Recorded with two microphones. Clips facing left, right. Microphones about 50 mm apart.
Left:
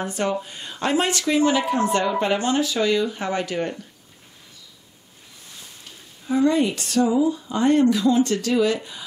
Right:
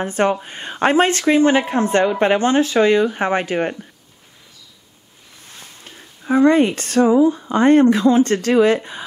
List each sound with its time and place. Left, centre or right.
0.0 s speech: right
5.9 s speech: right